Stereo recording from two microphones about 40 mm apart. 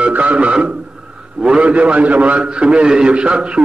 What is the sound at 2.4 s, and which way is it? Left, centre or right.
A man's voice, right.